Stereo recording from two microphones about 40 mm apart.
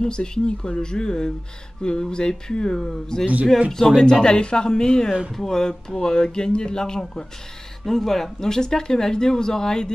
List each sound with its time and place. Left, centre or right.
0.0 s speech: centre